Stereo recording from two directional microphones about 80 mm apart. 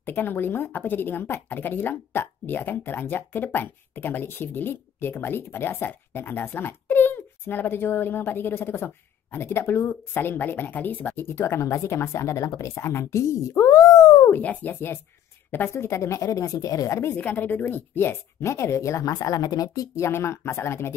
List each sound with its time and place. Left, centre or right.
0.0 s speech: left
14.2 s speech: left
17.2 s speech: centre; by 19.9 s left
20.0 s speech: left